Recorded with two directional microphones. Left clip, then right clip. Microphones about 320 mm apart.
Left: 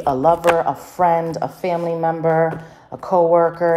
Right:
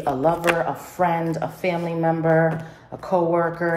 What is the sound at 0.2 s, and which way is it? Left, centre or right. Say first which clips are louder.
Speech: left 5 dB; centre.